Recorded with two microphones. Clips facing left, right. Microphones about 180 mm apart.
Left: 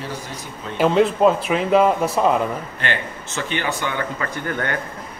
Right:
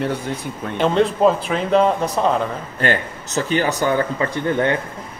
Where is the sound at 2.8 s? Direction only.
40° right (ahead or behind).